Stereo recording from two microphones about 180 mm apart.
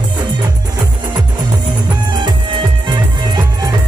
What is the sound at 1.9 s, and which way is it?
Music, 25° right (ahead or behind).